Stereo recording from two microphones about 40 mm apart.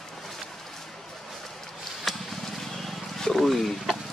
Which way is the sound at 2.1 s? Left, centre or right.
Centre.